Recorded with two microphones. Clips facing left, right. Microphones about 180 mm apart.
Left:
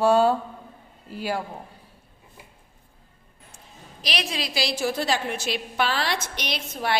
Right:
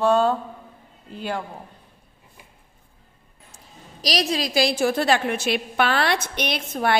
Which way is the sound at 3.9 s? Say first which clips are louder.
Right 6 dB; 40° right (ahead or behind).